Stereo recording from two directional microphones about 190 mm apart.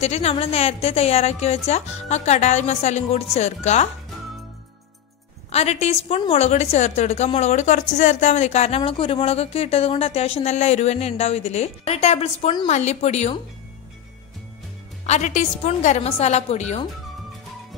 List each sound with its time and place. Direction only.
0.0 s speech: 35° left (ahead or behind)
5.5 s speech: 35° left (ahead or behind)
15.0 s speech: 40° left (ahead or behind)